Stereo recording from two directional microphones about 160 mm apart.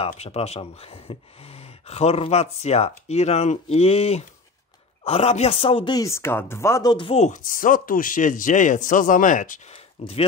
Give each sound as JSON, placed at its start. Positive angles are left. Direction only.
{"t": 0.1, "sound": "speech", "side_deg": 40}
{"t": 5.9, "sound": "speech", "side_deg": 15}
{"t": 7.2, "sound": "speech", "side_deg": 55}